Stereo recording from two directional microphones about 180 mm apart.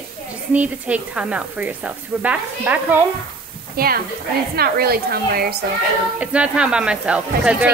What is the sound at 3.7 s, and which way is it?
A woman's voice, 55° right (ahead or behind).